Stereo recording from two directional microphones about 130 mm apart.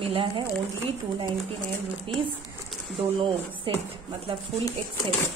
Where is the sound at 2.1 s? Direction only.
45° right (ahead or behind).